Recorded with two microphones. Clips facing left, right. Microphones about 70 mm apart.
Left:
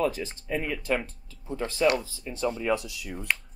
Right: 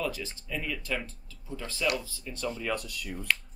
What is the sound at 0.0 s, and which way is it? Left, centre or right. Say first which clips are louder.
Speech: left 6 dB; left.